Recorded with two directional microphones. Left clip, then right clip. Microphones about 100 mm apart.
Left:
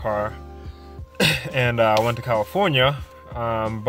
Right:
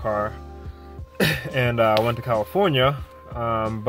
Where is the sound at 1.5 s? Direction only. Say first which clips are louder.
Right 1 dB; 10° left (ahead or behind).